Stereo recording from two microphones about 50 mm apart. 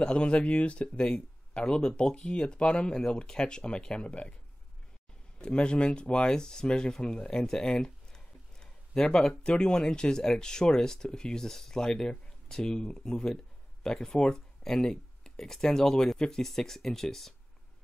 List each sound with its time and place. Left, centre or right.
0.0 s speech: left
5.4 s speech: centre